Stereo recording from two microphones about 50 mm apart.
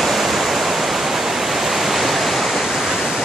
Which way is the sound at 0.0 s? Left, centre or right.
Centre.